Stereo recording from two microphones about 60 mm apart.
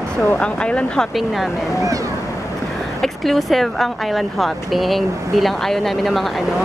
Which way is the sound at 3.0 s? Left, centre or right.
Centre.